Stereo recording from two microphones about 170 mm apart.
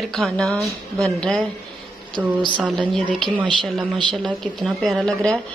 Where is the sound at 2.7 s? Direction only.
5° left (ahead or behind).